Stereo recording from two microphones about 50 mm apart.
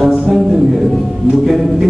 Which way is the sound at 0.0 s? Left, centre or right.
Centre.